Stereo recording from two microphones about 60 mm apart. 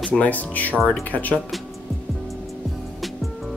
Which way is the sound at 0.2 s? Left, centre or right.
Left.